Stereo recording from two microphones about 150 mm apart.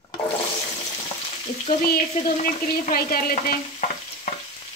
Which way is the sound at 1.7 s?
75° left (ahead or behind).